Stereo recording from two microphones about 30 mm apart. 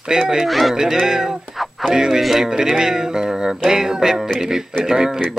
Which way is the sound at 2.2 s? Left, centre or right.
Centre.